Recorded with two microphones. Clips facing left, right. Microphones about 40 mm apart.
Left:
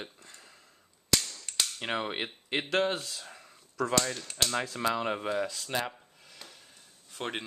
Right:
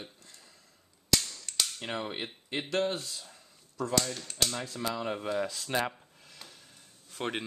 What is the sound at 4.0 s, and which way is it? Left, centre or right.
Cap gun, centre.